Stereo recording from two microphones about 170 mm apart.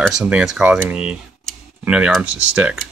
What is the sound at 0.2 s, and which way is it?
Speech, 5° right (ahead or behind).